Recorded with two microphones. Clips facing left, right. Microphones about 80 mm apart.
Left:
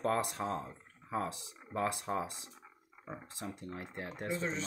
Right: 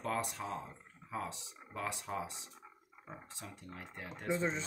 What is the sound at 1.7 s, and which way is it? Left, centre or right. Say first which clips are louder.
Speech: left 5 dB; left.